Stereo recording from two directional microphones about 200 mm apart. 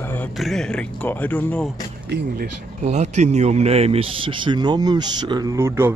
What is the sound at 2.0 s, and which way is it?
Speech, 55° right (ahead or behind).